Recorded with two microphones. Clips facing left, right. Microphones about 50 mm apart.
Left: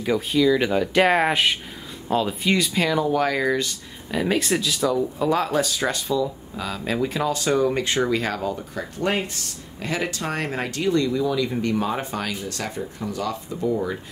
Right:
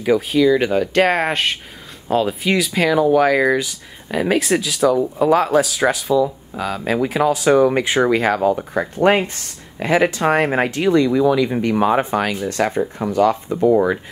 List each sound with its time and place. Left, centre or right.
0.0 s speech: centre
6.2 s speech: centre
7.5 s speech: right
12.6 s speech: right
13.7 s speech: right